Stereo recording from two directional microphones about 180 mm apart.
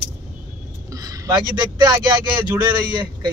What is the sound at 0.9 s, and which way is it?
Speech, 20° right (ahead or behind).